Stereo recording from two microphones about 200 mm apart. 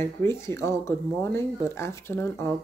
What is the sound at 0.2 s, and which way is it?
Speech, 15° left (ahead or behind).